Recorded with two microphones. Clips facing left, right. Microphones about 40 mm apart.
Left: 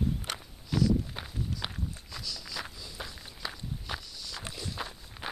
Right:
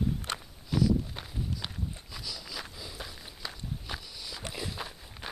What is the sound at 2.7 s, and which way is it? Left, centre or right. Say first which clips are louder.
Walk: right 2 dB; centre.